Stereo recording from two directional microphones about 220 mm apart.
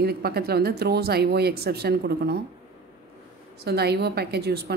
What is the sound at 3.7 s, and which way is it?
A woman's voice, 45° right (ahead or behind).